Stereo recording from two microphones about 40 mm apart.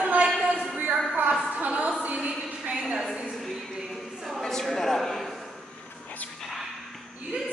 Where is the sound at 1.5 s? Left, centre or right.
Right.